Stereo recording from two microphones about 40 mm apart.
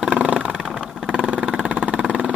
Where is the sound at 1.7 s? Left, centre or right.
Right.